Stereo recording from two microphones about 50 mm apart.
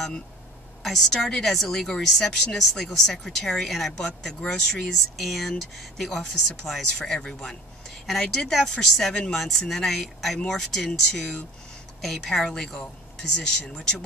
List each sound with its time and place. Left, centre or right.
0.8 s a woman's voice: centre